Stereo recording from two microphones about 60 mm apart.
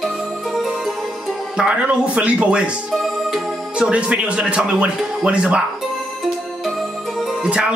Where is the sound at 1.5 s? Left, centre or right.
Centre.